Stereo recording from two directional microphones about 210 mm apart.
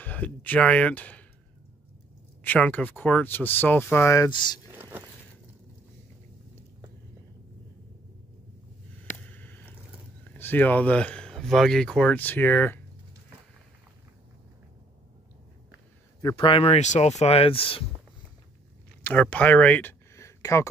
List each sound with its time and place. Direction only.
0.0 s speech: 10° left (ahead or behind)
2.4 s speech: 10° left (ahead or behind)
4.6 s a sound: 10° right (ahead or behind)
9.3 s a sound: 10° left (ahead or behind)
10.3 s speech: 10° left (ahead or behind)
16.2 s speech: 20° left (ahead or behind)
19.0 s speech: 5° left (ahead or behind)